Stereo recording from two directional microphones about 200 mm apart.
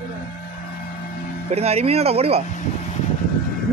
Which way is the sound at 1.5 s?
30° right (ahead or behind).